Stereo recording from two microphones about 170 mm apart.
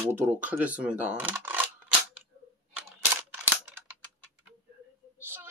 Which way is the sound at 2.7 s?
10° right (ahead or behind).